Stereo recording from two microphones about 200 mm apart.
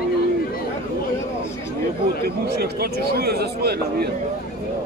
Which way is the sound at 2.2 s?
50° right (ahead or behind).